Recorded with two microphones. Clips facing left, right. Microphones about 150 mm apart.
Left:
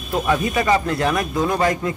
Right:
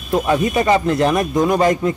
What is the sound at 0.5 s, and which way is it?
A man's voice, 25° right (ahead or behind).